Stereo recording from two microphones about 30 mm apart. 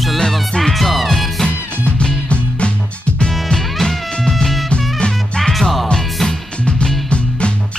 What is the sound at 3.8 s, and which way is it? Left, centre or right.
Music, centre.